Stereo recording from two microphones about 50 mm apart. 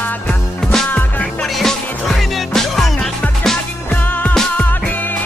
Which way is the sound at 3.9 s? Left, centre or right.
Left.